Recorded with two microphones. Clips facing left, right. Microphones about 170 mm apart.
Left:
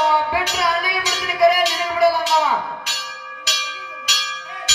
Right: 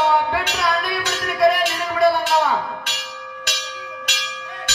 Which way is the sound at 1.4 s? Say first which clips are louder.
Left 2 dB; centre (ahead or behind).